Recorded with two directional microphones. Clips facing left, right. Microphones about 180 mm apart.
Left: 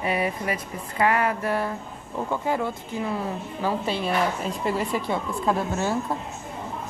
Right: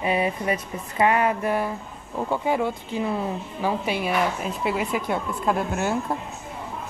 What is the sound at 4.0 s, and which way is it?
Speech, 10° right (ahead or behind).